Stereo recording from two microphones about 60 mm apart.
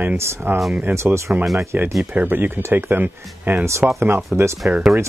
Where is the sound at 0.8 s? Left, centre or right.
Right.